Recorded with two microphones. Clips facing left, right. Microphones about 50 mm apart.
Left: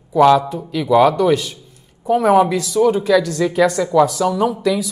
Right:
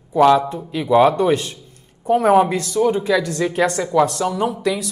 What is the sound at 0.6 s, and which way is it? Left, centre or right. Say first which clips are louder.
Speech: left 1 dB; right.